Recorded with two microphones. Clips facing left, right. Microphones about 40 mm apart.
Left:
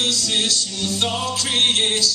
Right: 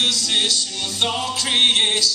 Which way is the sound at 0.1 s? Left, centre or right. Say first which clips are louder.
Right 1 dB; right.